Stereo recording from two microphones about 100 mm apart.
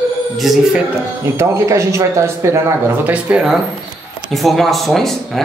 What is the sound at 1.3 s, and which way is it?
Speech, 30° right (ahead or behind).